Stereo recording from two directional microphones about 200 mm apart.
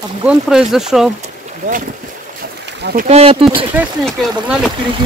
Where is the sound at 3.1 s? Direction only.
30° right (ahead or behind).